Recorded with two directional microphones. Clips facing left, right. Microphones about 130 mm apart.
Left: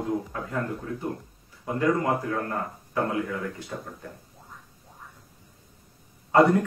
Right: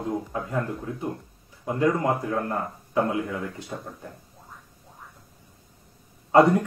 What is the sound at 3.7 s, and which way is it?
Speech, 15° right (ahead or behind).